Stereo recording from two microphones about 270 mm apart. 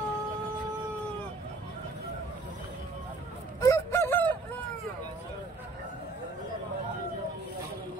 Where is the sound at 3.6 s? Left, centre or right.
Centre.